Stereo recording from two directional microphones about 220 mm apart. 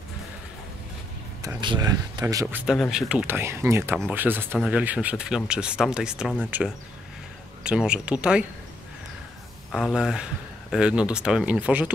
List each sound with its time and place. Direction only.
1.4 s speech: 20° right (ahead or behind)
2.4 s speech: 5° right (ahead or behind)
7.6 s speech: 5° right (ahead or behind)
9.7 s speech: centre (ahead or behind)